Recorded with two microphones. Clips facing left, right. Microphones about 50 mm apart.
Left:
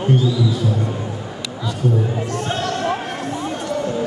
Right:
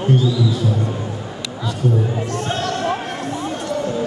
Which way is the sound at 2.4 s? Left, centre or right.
Centre.